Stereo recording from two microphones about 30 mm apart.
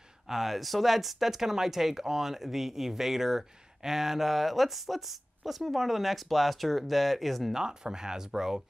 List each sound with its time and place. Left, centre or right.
0.3 s speech: centre
7.5 s speech: right